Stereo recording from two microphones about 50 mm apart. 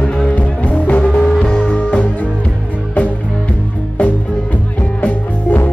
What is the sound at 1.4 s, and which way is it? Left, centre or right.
Music, centre.